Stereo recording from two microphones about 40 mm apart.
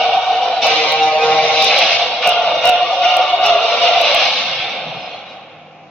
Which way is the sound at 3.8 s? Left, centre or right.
Centre.